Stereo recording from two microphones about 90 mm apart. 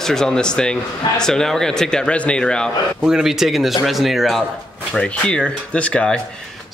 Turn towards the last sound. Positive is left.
turn(degrees=10)  # may be behind; listen again after turning